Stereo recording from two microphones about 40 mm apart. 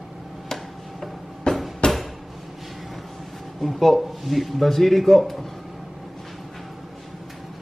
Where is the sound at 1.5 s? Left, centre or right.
Left.